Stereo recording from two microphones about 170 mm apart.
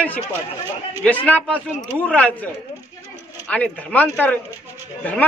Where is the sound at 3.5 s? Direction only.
10° left (ahead or behind).